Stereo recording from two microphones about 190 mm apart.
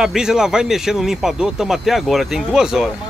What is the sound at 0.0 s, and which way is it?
Speech, 5° right (ahead or behind).